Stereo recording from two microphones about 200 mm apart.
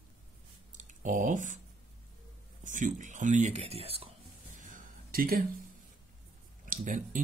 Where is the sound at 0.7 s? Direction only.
40° right (ahead or behind).